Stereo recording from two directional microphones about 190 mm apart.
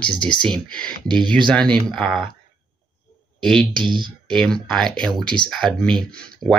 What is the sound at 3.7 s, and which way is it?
Speech, 25° right (ahead or behind).